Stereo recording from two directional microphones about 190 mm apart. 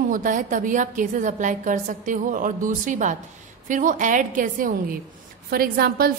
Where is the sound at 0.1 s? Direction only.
45° right (ahead or behind).